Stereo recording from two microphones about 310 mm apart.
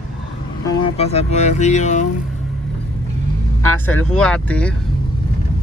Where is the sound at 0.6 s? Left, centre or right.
Centre.